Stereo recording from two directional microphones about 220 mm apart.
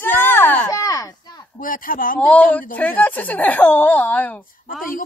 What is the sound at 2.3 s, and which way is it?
Speech, 5° left (ahead or behind).